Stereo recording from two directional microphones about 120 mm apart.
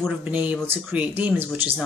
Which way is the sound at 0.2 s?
15° right (ahead or behind).